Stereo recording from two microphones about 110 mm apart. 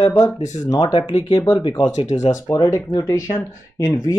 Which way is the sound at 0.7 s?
50° left (ahead or behind).